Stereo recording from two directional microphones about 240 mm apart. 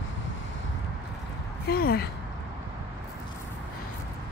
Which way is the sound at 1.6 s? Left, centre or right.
Left.